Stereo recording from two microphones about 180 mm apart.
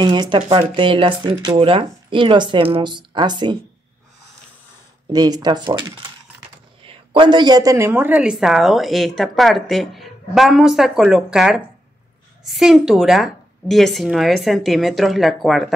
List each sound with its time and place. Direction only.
0.0 s speech: 25° right (ahead or behind)
5.1 s speech: 20° right (ahead or behind)
6.9 s a woman's voice: 30° right (ahead or behind); by 15.7 s centre (ahead or behind)